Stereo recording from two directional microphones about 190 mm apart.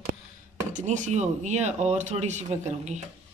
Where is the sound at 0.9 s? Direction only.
35° right (ahead or behind).